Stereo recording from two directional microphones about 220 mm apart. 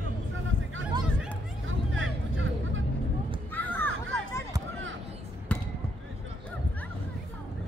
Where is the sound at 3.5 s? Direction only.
10° left (ahead or behind).